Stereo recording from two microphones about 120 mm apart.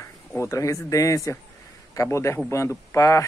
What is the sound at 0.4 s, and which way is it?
Speech, 25° left (ahead or behind).